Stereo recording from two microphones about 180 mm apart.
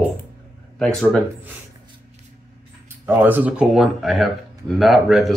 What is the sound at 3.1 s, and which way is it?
Speech, 10° right (ahead or behind).